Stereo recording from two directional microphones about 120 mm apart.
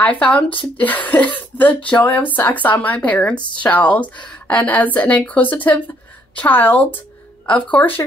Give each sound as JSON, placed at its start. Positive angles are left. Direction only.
{"t": 0.0, "sound": "speech", "side_deg": 10}
{"t": 3.3, "sound": "a woman's voice", "side_deg": 40}
{"t": 3.6, "sound": "speech", "side_deg": 10}